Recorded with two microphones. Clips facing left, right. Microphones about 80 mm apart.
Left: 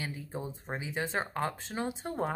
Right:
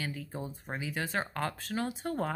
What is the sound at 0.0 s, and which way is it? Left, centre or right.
Speech, left.